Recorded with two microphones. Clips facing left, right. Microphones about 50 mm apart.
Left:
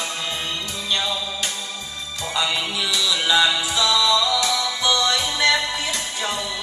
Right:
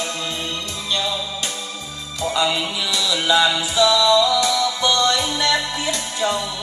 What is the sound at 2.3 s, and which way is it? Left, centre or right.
Music, centre.